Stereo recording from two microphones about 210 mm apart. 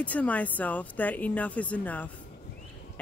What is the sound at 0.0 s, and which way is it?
Speech, 5° left (ahead or behind).